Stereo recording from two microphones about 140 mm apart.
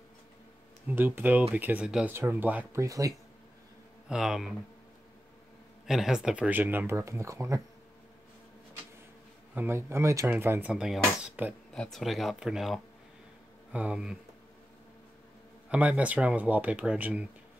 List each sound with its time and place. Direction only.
0.8 s speech: 15° right (ahead or behind)
4.1 s speech: 5° right (ahead or behind)
5.9 s speech: 5° right (ahead or behind); by 7.6 s 20° right (ahead or behind)
9.6 s speech: 15° right (ahead or behind)
11.7 s speech: 5° left (ahead or behind)
15.7 s speech: 10° right (ahead or behind)